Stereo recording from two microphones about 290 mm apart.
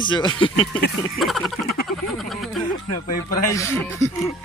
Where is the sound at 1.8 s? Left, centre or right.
Centre.